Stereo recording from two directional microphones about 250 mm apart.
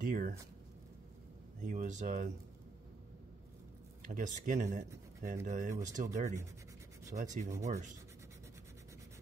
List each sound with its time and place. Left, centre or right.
0.0 s a sound: right
1.6 s speech: right
4.0 s speech: right